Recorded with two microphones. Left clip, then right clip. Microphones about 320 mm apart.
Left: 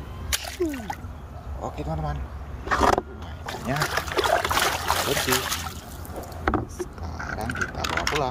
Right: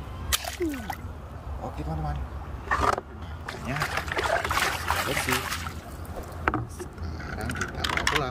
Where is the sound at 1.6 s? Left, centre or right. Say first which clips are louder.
Left 4 dB; centre.